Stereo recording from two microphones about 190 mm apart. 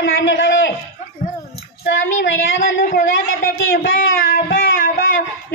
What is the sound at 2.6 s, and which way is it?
Speech, 50° left (ahead or behind).